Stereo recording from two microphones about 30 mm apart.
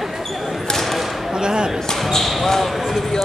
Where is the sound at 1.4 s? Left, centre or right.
Right.